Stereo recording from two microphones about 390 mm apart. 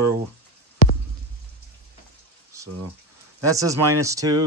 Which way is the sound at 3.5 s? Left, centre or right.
Centre.